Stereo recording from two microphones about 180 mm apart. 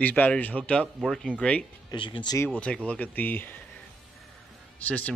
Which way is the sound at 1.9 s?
25° left (ahead or behind).